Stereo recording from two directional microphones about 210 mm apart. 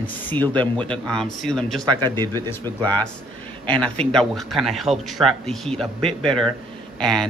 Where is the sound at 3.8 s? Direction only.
5° left (ahead or behind).